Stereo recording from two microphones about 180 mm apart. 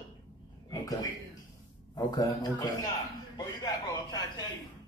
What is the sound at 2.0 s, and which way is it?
Speech, 20° left (ahead or behind).